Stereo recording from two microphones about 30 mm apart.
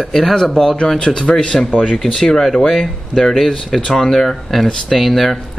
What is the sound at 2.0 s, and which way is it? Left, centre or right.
Speech, centre.